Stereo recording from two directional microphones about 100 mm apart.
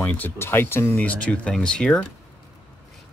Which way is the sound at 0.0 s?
15° left (ahead or behind).